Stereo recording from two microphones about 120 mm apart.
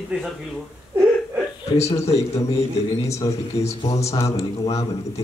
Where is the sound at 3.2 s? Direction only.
40° left (ahead or behind).